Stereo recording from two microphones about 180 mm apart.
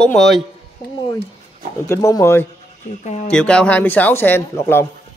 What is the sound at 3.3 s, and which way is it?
Speech, 5° left (ahead or behind).